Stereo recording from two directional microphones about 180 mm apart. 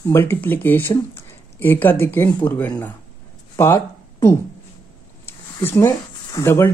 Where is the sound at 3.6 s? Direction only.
15° left (ahead or behind).